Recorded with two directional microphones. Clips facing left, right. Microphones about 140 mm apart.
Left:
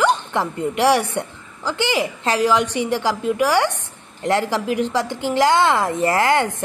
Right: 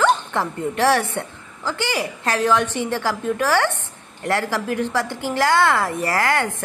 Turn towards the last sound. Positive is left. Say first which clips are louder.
# left 3 dB
turn(degrees=20)  # may be behind; listen again after turning